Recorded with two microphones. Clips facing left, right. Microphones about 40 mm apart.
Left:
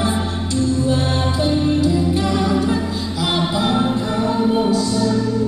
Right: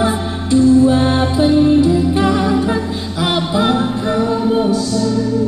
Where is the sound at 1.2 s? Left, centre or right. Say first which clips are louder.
Right 6 dB; centre.